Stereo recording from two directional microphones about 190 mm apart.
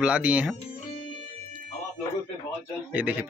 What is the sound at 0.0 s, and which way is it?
Speech, 5° right (ahead or behind).